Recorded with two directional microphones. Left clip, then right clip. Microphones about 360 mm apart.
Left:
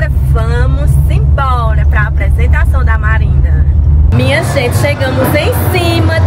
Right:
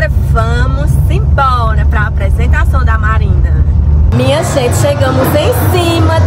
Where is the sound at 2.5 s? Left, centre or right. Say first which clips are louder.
Right 2 dB; centre.